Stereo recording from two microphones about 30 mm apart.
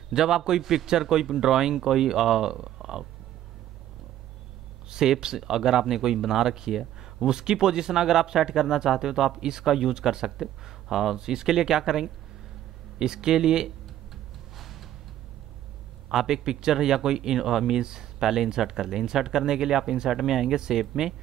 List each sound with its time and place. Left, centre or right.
0.1 s speech: centre
4.8 s speech: right
9.7 s speech: centre
11.1 s speech: right
13.7 s a sound: centre
16.1 s speech: centre
17.7 s speech: right